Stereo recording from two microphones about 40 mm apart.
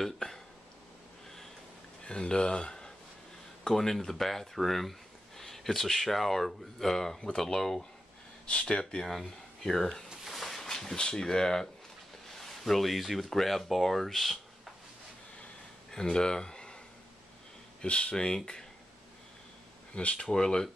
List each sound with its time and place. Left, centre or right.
0.0 s a sound: centre
2.0 s speech: left
8.5 s speech: left
10.2 s a sound: centre
11.0 s speech: centre
12.4 s speech: centre
15.9 s speech: centre
17.8 s speech: left
18.1 s speech: centre
19.9 s speech: left
20.2 s speech: centre